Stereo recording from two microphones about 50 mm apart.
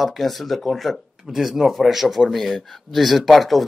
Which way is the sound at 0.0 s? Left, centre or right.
Centre.